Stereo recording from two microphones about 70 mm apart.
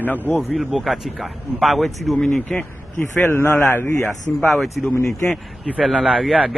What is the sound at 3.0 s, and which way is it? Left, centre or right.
A man's voice, left.